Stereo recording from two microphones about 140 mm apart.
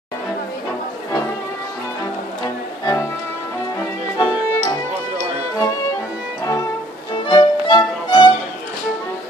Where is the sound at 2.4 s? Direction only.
25° left (ahead or behind).